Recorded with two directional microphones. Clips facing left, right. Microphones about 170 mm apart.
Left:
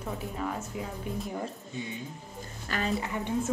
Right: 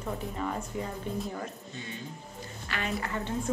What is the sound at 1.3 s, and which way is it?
Speech, 15° left (ahead or behind).